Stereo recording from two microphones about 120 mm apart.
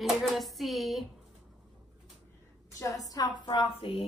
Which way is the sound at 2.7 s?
30° left (ahead or behind).